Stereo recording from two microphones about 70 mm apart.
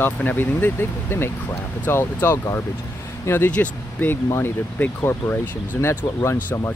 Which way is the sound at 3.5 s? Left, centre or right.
Left.